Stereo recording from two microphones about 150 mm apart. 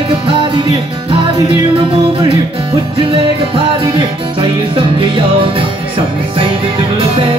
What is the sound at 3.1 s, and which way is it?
Music, 35° right (ahead or behind).